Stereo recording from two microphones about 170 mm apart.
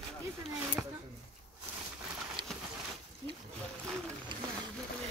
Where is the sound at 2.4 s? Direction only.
30° right (ahead or behind).